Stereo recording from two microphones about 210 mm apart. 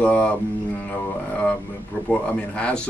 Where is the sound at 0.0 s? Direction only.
5° left (ahead or behind).